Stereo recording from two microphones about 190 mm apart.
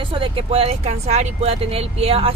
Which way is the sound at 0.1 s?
30° right (ahead or behind).